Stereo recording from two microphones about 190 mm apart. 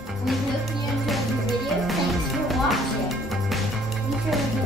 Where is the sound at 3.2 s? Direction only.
Centre (ahead or behind).